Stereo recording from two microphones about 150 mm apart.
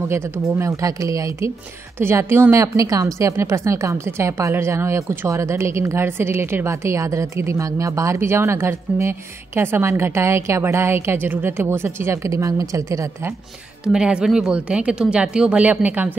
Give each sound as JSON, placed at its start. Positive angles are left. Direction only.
{"t": 0.1, "sound": "a woman's voice", "side_deg": -20}
{"t": 13.9, "sound": "speech", "side_deg": -5}